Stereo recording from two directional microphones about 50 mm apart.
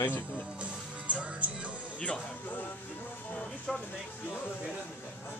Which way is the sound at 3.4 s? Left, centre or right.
Centre.